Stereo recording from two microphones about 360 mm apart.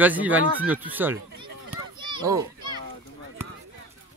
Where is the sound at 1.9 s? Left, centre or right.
Centre.